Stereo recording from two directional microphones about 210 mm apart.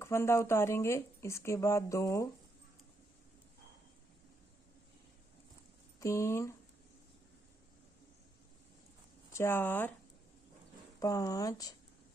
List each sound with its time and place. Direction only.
0.0 s speech: 15° left (ahead or behind)
5.9 s speech: 15° left (ahead or behind)
9.3 s speech: 10° left (ahead or behind)
11.0 s speech: 15° left (ahead or behind)